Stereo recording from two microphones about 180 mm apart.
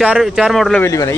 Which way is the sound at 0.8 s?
20° left (ahead or behind).